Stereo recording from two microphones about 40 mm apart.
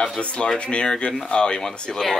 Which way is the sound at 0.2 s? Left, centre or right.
Left.